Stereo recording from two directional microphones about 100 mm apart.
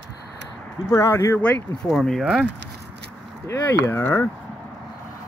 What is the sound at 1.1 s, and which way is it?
Speech, 30° left (ahead or behind).